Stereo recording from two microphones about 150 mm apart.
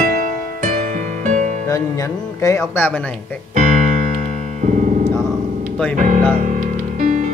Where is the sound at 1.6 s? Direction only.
20° left (ahead or behind).